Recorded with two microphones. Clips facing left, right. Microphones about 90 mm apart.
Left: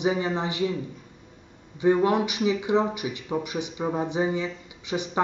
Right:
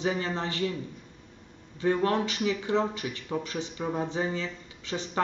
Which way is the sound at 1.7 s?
15° left (ahead or behind).